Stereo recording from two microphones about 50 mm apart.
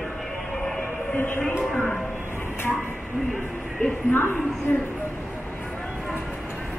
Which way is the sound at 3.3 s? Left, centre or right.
Centre.